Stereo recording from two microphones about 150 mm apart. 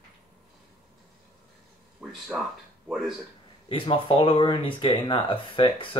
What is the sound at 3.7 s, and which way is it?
Speech, 35° left (ahead or behind).